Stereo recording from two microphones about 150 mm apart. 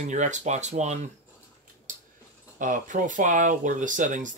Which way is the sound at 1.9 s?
65° right (ahead or behind).